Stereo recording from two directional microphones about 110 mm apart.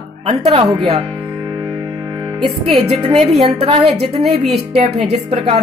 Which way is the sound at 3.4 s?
65° right (ahead or behind).